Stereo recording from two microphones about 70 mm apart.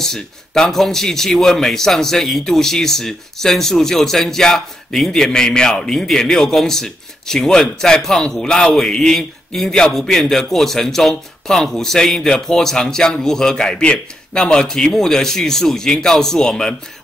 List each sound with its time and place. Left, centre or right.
0.0 s a man's voice: centre